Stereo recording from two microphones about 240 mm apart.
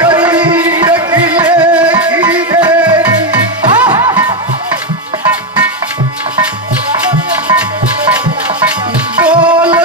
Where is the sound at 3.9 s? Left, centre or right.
Centre.